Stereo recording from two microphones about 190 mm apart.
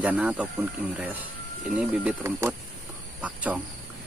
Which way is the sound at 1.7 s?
5° right (ahead or behind).